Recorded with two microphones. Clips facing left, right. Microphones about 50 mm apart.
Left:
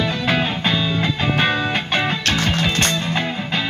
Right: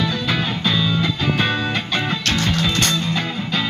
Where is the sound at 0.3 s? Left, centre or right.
Left.